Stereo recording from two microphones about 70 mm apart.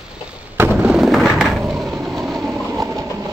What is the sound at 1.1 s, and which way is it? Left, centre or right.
Skateboard, centre.